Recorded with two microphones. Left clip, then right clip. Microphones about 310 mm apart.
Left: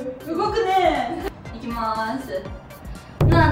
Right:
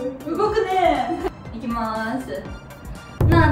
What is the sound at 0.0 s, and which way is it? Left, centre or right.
Music, centre.